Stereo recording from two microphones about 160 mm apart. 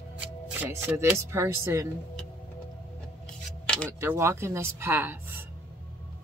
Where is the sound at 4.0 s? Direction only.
15° right (ahead or behind).